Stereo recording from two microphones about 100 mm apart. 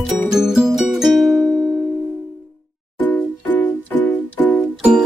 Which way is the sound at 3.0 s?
15° left (ahead or behind).